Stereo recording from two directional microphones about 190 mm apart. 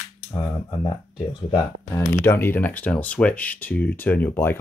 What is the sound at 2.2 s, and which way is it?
Speech, 10° left (ahead or behind).